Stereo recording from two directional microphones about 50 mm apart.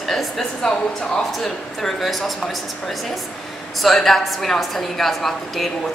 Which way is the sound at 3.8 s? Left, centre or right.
Centre.